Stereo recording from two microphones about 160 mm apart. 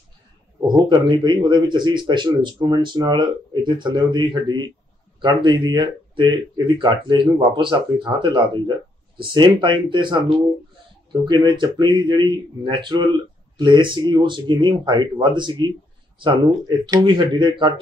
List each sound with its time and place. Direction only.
0.6 s speech: 25° right (ahead or behind)
11.2 s speech: 30° right (ahead or behind)